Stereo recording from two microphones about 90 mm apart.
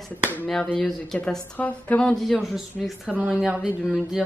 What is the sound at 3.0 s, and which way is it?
Speech, 15° right (ahead or behind).